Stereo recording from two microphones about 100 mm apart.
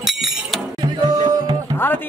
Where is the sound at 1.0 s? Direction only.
45° right (ahead or behind).